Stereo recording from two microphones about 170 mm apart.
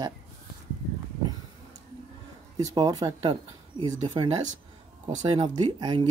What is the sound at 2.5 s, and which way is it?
Speech, 20° right (ahead or behind).